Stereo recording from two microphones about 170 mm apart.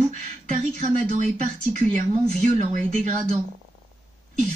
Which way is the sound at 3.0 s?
40° right (ahead or behind).